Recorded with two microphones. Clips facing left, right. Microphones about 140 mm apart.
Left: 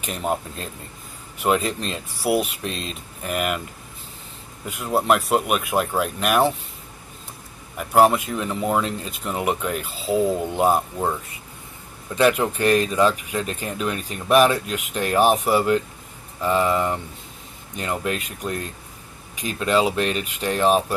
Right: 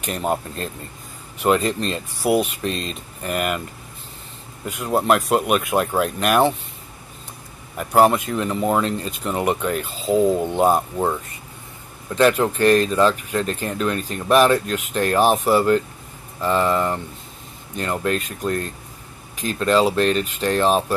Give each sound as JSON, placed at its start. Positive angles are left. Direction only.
{"t": 0.0, "sound": "speech", "side_deg": 0}
{"t": 4.6, "sound": "speech", "side_deg": 5}
{"t": 7.7, "sound": "speech", "side_deg": 0}
{"t": 12.2, "sound": "speech", "side_deg": 10}